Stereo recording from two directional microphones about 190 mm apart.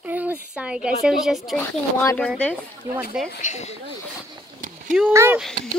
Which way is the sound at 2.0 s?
15° left (ahead or behind).